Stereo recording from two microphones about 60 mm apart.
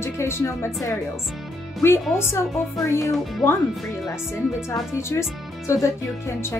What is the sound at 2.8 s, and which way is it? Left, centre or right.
Speech, left.